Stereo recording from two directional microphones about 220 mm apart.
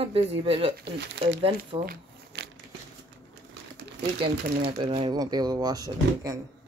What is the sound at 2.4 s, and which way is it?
Crumpling, 50° right (ahead or behind).